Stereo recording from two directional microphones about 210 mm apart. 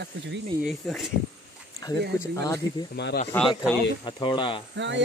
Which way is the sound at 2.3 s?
15° left (ahead or behind).